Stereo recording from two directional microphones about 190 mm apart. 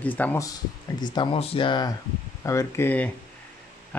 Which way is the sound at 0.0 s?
10° left (ahead or behind).